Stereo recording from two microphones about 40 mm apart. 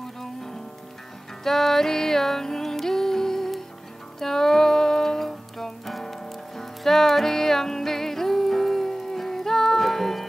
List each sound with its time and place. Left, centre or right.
1.4 s music: centre